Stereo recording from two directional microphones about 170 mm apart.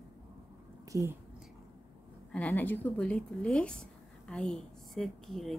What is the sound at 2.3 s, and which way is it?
A woman's voice, 10° left (ahead or behind).